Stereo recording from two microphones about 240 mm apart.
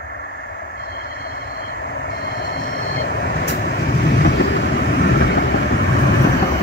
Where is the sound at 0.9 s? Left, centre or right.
Left.